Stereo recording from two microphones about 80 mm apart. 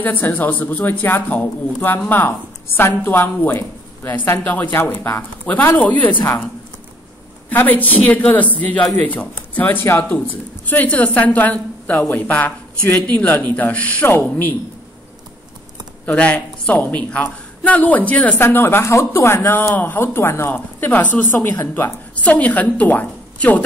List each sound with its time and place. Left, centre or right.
0.0 s a man's voice: left
7.4 s a man's voice: left
16.1 s a man's voice: centre
22.1 s a woman's voice: centre